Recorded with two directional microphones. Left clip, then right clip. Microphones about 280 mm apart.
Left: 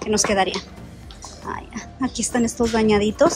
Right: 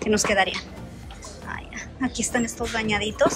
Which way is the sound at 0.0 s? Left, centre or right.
Centre.